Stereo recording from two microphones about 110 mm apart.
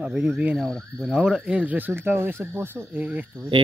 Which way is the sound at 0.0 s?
10° right (ahead or behind).